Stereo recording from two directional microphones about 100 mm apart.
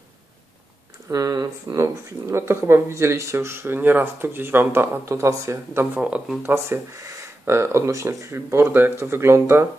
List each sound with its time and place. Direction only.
1.1 s speech: 40° right (ahead or behind)
5.9 s speech: 15° right (ahead or behind)
6.4 s speech: 25° right (ahead or behind)